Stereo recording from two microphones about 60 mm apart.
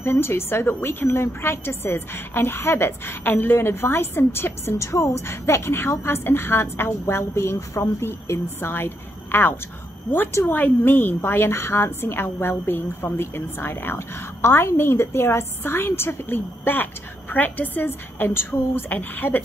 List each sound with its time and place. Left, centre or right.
0.0 s a woman's voice: left
7.5 s a woman's voice: left